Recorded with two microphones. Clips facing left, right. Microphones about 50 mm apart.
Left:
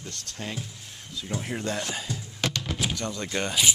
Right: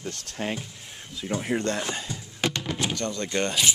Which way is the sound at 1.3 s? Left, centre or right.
Centre.